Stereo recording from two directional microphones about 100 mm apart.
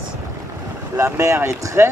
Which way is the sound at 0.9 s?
30° right (ahead or behind).